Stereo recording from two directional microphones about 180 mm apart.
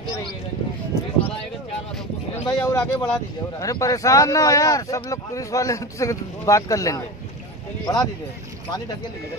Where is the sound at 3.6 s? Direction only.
20° left (ahead or behind).